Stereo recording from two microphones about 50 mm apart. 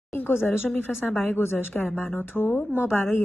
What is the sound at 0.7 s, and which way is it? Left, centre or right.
A woman's voice, left.